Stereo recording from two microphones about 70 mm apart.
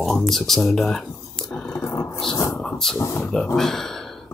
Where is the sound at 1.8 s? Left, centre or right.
Left.